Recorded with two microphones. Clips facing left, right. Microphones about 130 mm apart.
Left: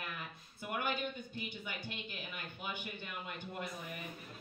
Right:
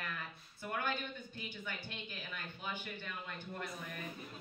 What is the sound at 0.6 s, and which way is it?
Speech, 15° left (ahead or behind).